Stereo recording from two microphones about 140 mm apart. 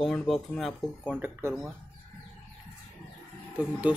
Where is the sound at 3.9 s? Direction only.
5° right (ahead or behind).